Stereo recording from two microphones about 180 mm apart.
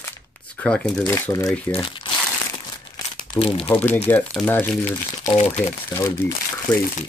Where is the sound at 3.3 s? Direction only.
30° left (ahead or behind).